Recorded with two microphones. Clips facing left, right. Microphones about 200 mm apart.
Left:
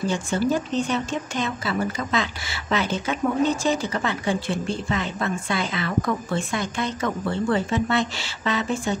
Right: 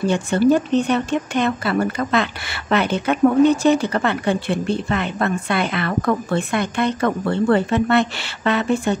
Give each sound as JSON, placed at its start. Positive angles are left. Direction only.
{"t": 0.0, "sound": "speech", "side_deg": -60}